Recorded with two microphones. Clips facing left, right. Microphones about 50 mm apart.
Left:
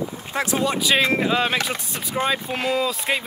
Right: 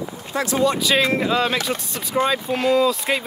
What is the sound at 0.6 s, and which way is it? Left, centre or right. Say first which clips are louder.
Speech: right 2 dB; centre.